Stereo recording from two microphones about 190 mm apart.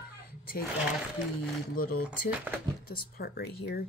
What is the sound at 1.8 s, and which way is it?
Speech, 50° left (ahead or behind).